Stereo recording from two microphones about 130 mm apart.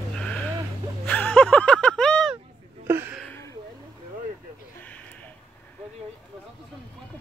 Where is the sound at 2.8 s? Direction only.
15° right (ahead or behind).